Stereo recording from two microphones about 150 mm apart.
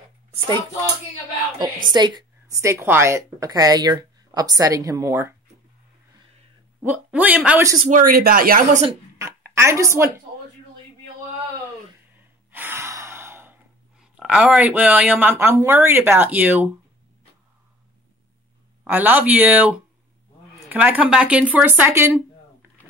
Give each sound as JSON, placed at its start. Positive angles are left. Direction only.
{"t": 0.3, "sound": "speech", "side_deg": -30}
{"t": 1.9, "sound": "a woman's voice", "side_deg": -30}
{"t": 6.8, "sound": "speech", "side_deg": -10}
{"t": 7.9, "sound": "speech", "side_deg": -75}
{"t": 9.2, "sound": "speech", "side_deg": -15}
{"t": 12.4, "sound": "sigh", "side_deg": -15}
{"t": 18.9, "sound": "speech", "side_deg": -10}